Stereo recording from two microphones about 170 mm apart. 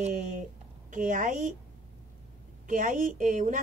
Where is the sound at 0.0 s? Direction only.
50° right (ahead or behind).